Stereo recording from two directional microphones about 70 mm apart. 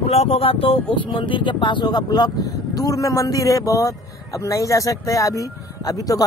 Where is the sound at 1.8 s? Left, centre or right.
Left.